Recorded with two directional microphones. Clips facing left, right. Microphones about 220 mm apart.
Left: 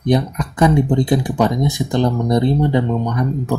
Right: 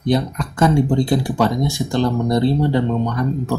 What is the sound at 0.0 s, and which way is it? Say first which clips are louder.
Speech: left 2 dB; 20° left (ahead or behind).